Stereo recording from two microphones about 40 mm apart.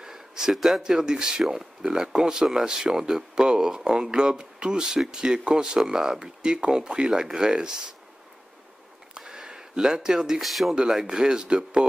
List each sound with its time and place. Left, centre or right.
0.0 s speech: centre
9.1 s a sound: centre
10.4 s speech: centre
10.7 s speech: centre